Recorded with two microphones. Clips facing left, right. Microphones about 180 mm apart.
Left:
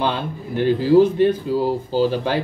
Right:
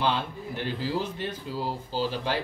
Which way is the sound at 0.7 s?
55° left (ahead or behind).